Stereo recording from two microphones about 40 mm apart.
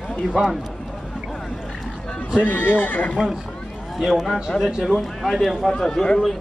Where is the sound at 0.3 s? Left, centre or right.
Centre.